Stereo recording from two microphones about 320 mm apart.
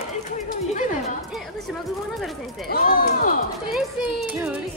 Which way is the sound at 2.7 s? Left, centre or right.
Left.